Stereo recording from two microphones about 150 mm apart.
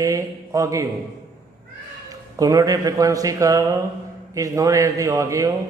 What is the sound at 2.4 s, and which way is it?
A man's voice, 25° right (ahead or behind).